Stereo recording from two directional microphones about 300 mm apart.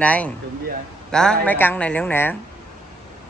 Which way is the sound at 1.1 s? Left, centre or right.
Centre.